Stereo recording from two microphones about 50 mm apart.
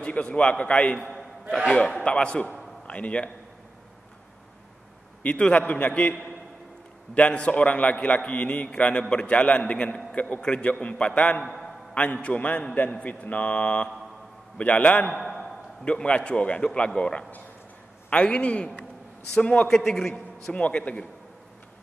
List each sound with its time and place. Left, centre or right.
0.0 s a man's voice: left
5.2 s a man's voice: left
7.2 s a man's voice: left
15.1 s a sound: centre
15.4 s a man's voice: centre
19.7 s a man's voice: centre
20.5 s a man's voice: left